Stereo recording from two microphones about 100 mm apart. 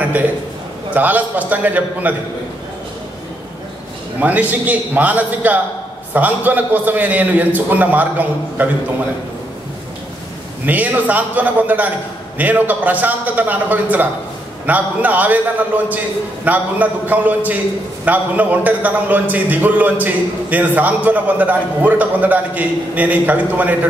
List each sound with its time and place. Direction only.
0.9 s a man's voice: 15° right (ahead or behind)
4.2 s a man's voice: 15° right (ahead or behind)
10.6 s a man's voice: 15° right (ahead or behind)